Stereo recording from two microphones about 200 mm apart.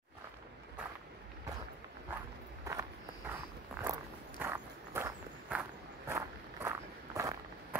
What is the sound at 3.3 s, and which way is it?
Walk, 10° right (ahead or behind).